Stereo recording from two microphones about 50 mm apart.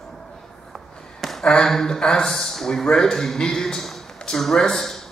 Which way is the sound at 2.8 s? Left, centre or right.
Centre.